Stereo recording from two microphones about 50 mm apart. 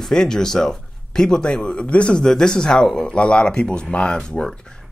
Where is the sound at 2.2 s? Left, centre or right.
Centre.